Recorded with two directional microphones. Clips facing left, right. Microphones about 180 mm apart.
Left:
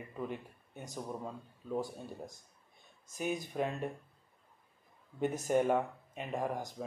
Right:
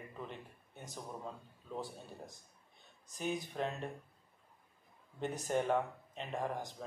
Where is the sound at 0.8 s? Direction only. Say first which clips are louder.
Left 4 dB; 10° left (ahead or behind).